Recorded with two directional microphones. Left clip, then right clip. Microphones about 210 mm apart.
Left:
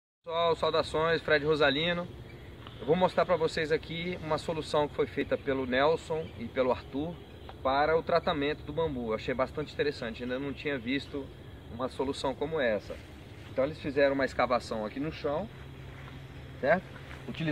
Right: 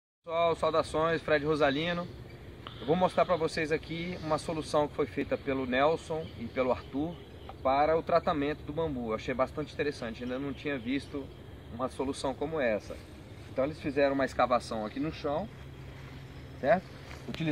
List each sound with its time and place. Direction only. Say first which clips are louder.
0.3 s speech: even; 15° left (ahead or behind)